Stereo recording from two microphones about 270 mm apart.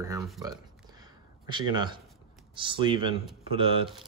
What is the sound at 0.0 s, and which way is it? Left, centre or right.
Speech, centre.